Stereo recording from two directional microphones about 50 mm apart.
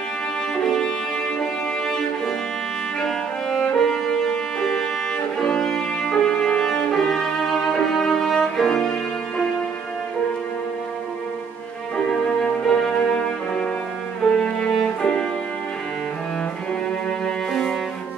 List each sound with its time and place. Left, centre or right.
0.7 s music: centre
3.6 s music: centre
12.1 s music: centre
14.2 s music: centre